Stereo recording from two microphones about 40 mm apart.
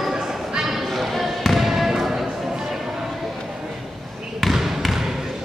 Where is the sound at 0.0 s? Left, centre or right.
Centre.